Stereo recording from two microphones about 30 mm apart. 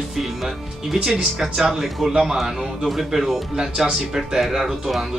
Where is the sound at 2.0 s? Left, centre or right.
Centre.